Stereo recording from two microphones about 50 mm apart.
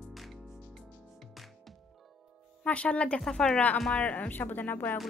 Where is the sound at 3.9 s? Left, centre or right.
Left.